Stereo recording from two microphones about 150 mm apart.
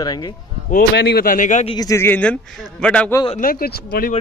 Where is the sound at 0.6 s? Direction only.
85° left; by 1.7 s 55° left (ahead or behind).